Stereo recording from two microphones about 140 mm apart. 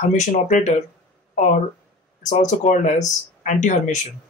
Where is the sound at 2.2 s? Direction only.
55° left (ahead or behind).